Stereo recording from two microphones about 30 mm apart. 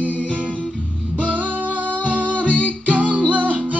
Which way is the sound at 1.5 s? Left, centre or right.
Right.